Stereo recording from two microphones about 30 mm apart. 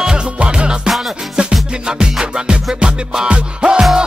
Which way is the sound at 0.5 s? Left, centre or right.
Right.